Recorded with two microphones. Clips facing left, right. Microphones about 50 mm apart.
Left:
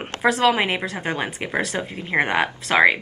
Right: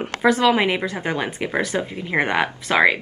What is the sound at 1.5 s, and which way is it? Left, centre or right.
Speech, centre.